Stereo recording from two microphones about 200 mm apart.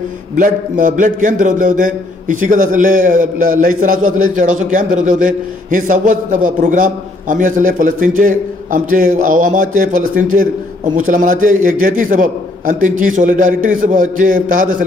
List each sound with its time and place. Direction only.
0.4 s a man's voice: 45° right (ahead or behind)